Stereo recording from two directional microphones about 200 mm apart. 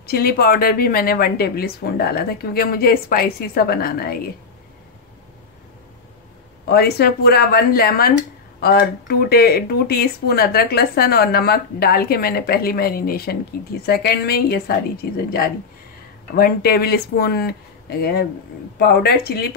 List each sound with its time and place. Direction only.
0.0 s speech: 50° left (ahead or behind)
6.7 s speech: 55° left (ahead or behind)